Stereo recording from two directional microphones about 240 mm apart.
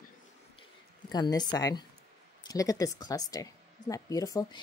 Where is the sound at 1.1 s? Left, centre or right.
Centre.